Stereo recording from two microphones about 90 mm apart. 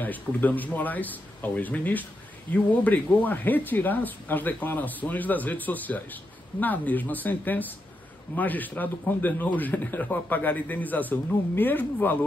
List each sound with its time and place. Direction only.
0.0 s speech: 20° left (ahead or behind)